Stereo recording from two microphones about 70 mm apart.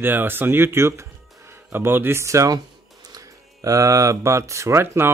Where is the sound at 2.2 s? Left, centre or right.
Right.